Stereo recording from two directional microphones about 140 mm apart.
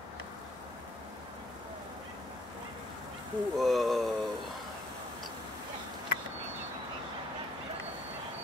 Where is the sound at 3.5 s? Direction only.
Centre (ahead or behind).